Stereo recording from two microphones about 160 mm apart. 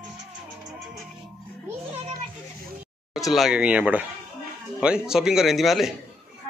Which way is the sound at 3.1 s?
Centre (ahead or behind).